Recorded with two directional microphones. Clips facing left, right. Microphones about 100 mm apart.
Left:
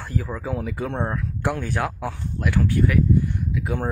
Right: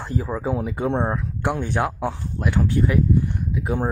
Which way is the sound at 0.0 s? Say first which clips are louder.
Right 3 dB; 20° right (ahead or behind).